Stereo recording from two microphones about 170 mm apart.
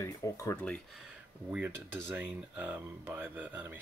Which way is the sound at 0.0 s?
15° left (ahead or behind).